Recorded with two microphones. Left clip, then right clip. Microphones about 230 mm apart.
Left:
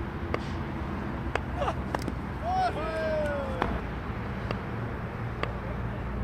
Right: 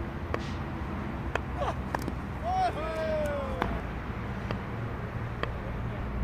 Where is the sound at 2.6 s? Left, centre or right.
Right.